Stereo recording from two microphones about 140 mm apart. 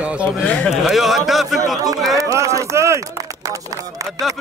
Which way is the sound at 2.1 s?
25° right (ahead or behind).